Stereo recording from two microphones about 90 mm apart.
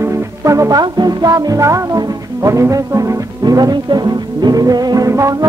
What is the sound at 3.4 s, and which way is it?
Music, 50° right (ahead or behind).